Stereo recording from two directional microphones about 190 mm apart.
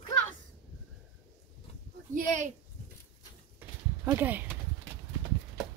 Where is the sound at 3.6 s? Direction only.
10° right (ahead or behind).